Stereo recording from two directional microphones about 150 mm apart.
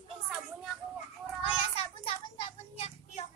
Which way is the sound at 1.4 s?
40° left (ahead or behind).